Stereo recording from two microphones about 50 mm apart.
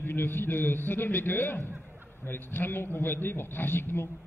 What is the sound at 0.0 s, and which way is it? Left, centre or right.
A man's voice, left.